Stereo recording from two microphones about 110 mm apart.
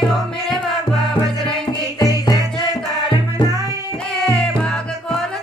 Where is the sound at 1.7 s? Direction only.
40° left (ahead or behind).